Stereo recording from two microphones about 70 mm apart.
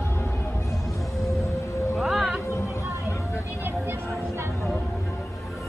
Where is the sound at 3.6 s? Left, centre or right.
Right.